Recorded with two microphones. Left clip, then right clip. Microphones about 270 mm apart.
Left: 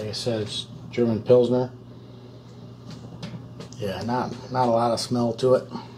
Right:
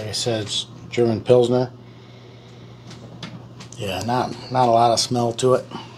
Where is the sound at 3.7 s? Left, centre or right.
Right.